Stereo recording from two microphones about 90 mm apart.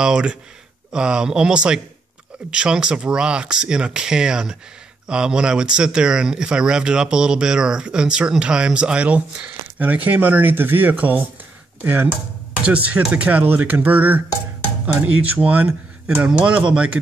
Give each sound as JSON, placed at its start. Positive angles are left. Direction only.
{"t": 0.0, "sound": "speech", "side_deg": -10}